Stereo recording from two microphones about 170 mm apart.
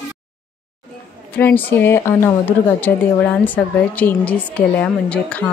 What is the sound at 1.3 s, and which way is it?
A woman's voice, 10° left (ahead or behind).